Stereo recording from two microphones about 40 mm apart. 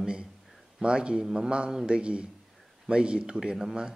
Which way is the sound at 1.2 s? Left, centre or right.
Centre.